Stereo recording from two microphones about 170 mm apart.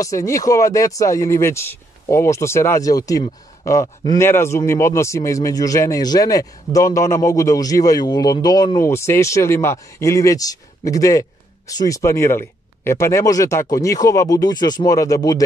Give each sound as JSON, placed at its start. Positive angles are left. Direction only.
{"t": 0.0, "sound": "speech", "side_deg": 20}